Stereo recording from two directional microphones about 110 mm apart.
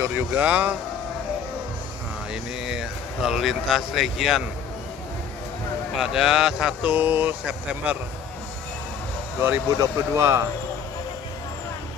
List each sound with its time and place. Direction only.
0.0 s speech: 15° right (ahead or behind)
2.6 s speech: 5° right (ahead or behind)
5.9 s speech: 5° right (ahead or behind)
9.4 s speech: 25° right (ahead or behind)